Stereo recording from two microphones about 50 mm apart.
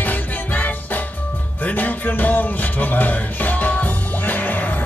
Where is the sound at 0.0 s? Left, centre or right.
Left.